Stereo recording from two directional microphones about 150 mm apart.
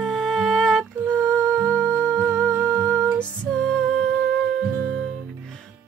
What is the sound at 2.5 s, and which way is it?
Music, 15° right (ahead or behind).